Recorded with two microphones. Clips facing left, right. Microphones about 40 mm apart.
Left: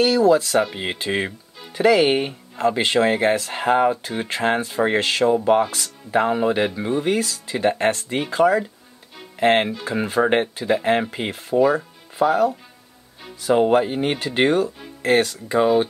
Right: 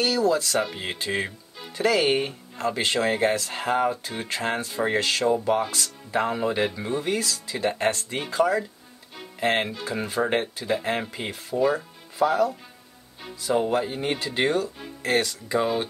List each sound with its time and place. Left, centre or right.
0.0 s speech: left
13.4 s speech: left
15.6 s speech: centre